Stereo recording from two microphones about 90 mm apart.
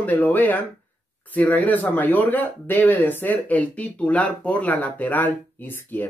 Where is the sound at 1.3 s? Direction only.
15° left (ahead or behind).